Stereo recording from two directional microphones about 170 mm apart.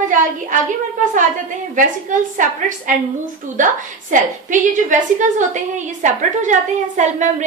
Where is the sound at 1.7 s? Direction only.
50° right (ahead or behind).